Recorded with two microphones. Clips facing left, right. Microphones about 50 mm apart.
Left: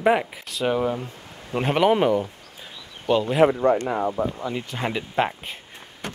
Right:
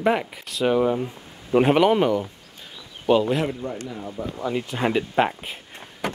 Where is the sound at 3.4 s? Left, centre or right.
Left.